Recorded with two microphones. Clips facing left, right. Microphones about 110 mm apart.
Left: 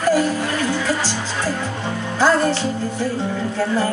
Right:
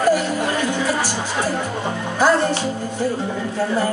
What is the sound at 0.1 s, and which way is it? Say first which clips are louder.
Music: left 1 dB; 15° right (ahead or behind).